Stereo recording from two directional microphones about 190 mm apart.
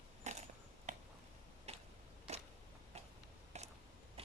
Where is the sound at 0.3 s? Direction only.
35° right (ahead or behind).